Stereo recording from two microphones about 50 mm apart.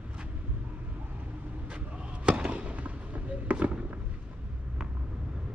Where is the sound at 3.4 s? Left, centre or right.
Right.